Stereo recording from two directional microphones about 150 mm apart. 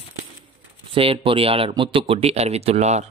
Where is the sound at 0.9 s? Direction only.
40° right (ahead or behind).